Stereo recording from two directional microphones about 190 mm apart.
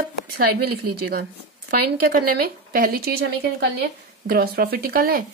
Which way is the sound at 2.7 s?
50° right (ahead or behind).